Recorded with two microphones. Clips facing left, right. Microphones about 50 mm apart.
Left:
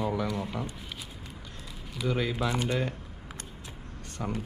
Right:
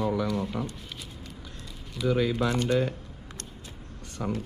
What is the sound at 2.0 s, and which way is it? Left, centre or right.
Speech, centre.